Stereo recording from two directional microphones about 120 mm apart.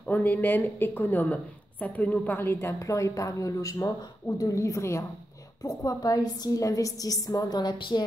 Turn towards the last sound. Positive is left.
turn(degrees=35)  # may be behind; listen again after turning